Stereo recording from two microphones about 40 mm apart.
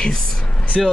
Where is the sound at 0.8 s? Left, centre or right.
Centre.